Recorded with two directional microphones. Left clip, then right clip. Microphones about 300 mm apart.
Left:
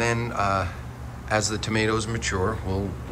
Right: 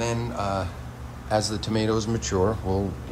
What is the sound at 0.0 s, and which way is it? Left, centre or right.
Speech, centre.